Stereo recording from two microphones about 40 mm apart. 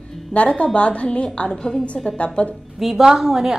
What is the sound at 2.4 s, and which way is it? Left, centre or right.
Speech, left.